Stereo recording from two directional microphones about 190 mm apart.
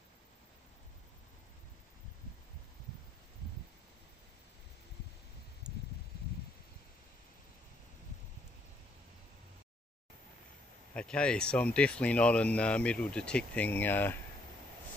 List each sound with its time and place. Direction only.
5.7 s rustling leaves: 5° right (ahead or behind)
10.9 s speech: 5° left (ahead or behind)